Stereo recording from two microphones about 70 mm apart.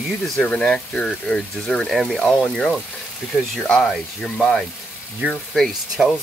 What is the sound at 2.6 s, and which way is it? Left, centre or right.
Speech, centre.